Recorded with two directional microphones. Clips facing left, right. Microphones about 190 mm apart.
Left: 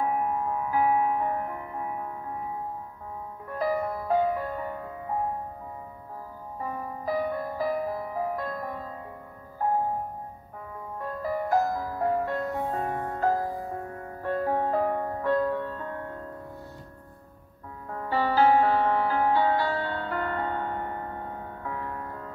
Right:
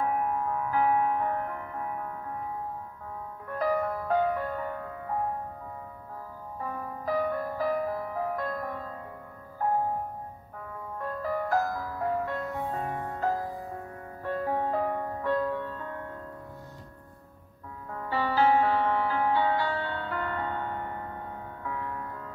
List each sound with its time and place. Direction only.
0.0 s music: 5° left (ahead or behind)
3.4 s music: 10° left (ahead or behind)
6.6 s music: 10° left (ahead or behind)
11.0 s music: 10° left (ahead or behind); by 16.2 s 40° left (ahead or behind)
17.8 s music: 40° left (ahead or behind)